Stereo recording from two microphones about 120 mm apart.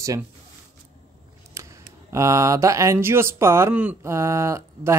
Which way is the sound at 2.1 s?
25° right (ahead or behind).